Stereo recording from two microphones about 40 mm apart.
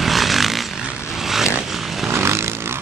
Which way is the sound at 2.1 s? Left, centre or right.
Right.